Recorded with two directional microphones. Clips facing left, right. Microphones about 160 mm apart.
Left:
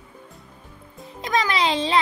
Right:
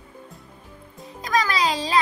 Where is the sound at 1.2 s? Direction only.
25° left (ahead or behind).